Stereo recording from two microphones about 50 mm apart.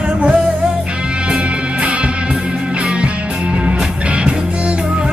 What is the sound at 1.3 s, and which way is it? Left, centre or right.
Music, right.